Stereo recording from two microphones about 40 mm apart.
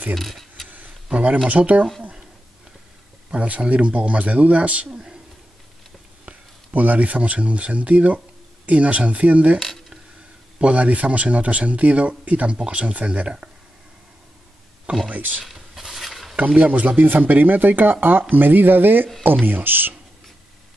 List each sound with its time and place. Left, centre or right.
0.1 s a sound: centre
0.7 s a sound: right
1.1 s speech: right
3.3 s speech: right
4.9 s a man's voice: centre
6.2 s speech: right
9.6 s a sound: centre
10.6 s speech: right
15.0 s speech: right
15.4 s stir: centre
16.3 s speech: right